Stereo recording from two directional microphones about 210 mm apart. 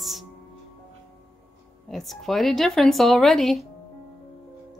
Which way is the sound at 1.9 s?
Centre (ahead or behind).